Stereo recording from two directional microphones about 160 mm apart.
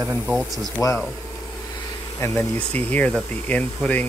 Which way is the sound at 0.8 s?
20° left (ahead or behind).